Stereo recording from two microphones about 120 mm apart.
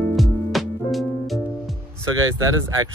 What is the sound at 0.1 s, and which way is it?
Music, centre (ahead or behind).